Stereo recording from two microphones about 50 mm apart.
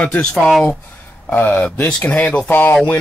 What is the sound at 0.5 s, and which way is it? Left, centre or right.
Speech, centre.